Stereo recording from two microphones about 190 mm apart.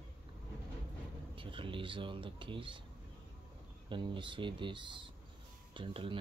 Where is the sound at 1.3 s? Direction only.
25° right (ahead or behind).